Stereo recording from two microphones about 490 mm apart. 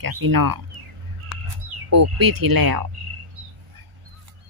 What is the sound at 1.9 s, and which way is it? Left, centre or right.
Speech, right.